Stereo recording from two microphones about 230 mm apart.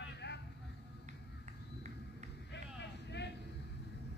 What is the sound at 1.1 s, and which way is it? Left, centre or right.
Run, right.